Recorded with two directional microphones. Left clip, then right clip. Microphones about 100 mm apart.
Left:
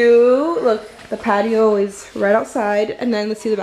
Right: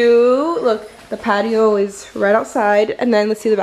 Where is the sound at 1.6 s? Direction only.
15° right (ahead or behind).